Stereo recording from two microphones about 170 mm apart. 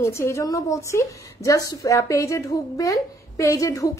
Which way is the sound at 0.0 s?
15° left (ahead or behind).